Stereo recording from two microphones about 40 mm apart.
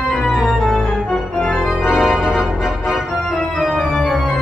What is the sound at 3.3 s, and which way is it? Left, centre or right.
Organ, centre.